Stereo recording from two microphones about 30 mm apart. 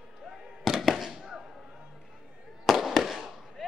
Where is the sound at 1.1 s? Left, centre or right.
Centre.